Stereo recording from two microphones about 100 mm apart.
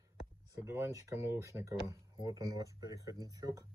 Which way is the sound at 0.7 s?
30° right (ahead or behind).